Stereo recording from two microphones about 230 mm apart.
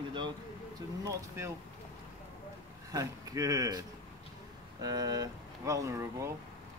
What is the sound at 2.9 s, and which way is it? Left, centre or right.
Speech, centre.